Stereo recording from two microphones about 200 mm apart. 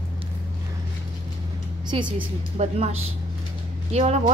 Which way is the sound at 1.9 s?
25° right (ahead or behind).